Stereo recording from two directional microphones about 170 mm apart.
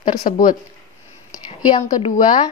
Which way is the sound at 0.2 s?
50° left (ahead or behind).